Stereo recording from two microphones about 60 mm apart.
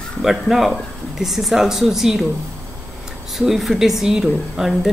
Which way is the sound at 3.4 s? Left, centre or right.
Centre.